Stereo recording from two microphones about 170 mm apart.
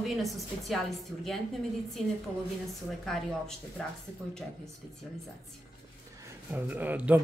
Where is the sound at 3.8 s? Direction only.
5° left (ahead or behind).